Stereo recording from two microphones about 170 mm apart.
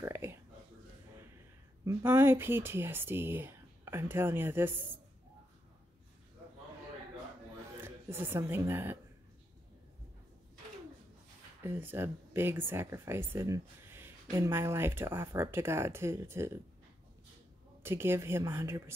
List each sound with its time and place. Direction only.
0.0 s a sound: 15° right (ahead or behind)
1.9 s speech: 15° right (ahead or behind)
7.8 s a woman's voice: 15° right (ahead or behind)
11.6 s speech: 10° right (ahead or behind)
17.8 s speech: 15° right (ahead or behind)